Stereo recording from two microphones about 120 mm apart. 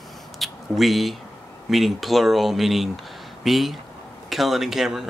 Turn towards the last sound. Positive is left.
turn(degrees=-5)  # may be behind; listen again after turning